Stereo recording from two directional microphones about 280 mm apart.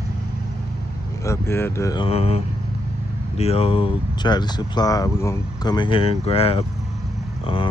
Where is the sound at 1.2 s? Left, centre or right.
Centre.